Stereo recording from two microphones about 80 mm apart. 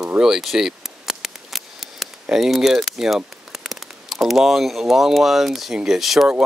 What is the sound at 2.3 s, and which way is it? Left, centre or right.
Speech, centre.